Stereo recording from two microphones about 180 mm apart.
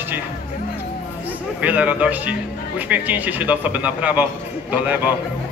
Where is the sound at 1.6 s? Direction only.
10° right (ahead or behind).